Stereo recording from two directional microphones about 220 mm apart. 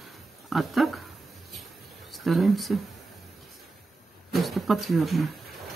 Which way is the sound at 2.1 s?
Centre (ahead or behind).